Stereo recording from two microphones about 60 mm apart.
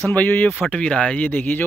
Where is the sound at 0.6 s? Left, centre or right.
Centre.